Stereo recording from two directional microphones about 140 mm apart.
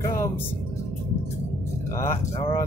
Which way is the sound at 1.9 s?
20° left (ahead or behind).